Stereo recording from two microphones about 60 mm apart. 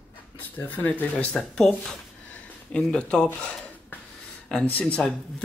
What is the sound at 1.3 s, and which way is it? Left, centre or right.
Speech, centre.